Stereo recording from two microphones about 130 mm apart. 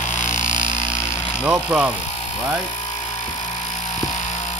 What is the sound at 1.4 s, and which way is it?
Speech, 10° right (ahead or behind).